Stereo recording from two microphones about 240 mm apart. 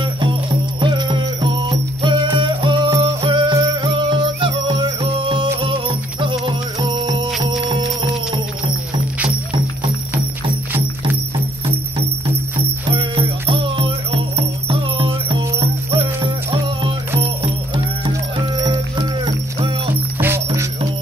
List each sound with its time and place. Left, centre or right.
0.7 s music: centre
12.9 s music: right